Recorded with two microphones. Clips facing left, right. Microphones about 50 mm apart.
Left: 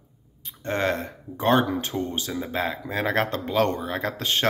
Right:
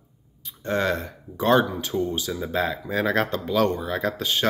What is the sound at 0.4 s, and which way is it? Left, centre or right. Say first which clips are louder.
Speech: right 1 dB; left.